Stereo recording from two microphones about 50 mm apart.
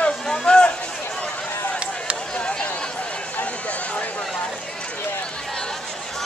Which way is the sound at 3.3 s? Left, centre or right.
Left.